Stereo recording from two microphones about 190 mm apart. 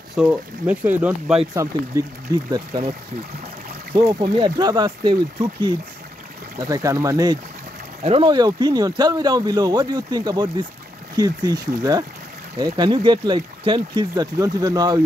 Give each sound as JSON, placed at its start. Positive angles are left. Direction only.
{"t": 0.1, "sound": "speech", "side_deg": -5}
{"t": 1.5, "sound": "speech", "side_deg": -15}
{"t": 4.1, "sound": "speech", "side_deg": -25}
{"t": 8.0, "sound": "speech", "side_deg": -30}